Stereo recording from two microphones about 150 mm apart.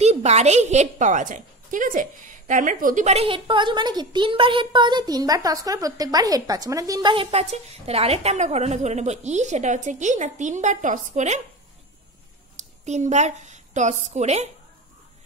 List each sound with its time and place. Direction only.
0.0 s a woman's voice: 45° right (ahead or behind); by 7.2 s 30° right (ahead or behind)
7.2 s a woman's voice: 45° right (ahead or behind)
12.5 s a woman's voice: 50° right (ahead or behind)